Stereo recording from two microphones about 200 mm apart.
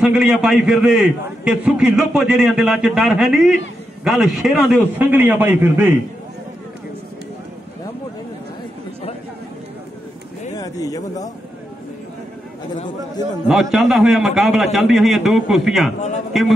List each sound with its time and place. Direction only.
0.0 s a man's voice: 5° right (ahead or behind)
10.5 s speech: 15° left (ahead or behind)
13.5 s a man's voice: centre (ahead or behind)